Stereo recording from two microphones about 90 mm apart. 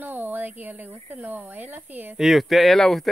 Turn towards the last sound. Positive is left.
turn(degrees=5)  # may be behind; listen again after turning